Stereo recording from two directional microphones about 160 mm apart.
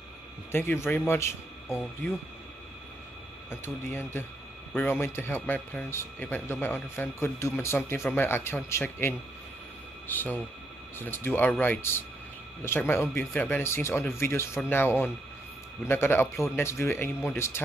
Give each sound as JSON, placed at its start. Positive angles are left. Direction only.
{"t": 0.5, "sound": "speech", "side_deg": 15}
{"t": 3.4, "sound": "speech", "side_deg": 15}